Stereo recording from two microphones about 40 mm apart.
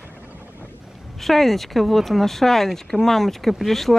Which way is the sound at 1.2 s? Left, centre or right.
Centre.